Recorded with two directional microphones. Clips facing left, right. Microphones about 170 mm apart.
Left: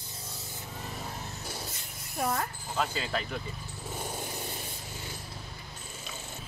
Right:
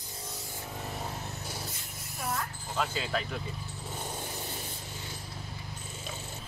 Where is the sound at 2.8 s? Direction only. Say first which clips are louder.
Even; centre (ahead or behind).